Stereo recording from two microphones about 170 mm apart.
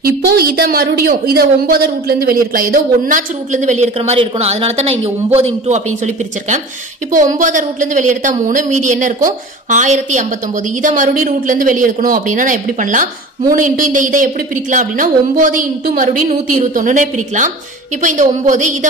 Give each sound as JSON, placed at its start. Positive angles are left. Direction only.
{"t": 0.3, "sound": "a woman's voice", "side_deg": -65}